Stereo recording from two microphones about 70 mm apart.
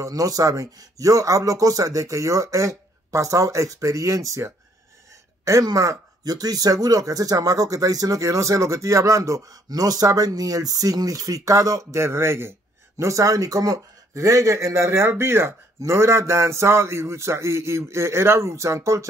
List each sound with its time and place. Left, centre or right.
0.0 s speech: right
12.9 s a man's voice: right